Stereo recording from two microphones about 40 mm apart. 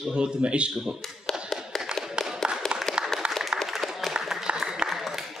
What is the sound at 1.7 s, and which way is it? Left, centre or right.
Tap, centre.